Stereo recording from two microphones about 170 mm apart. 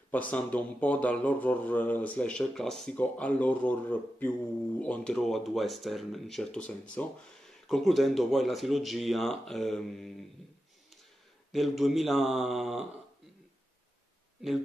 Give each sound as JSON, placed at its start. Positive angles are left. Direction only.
{"t": 0.3, "sound": "speech", "side_deg": 10}
{"t": 11.5, "sound": "speech", "side_deg": 0}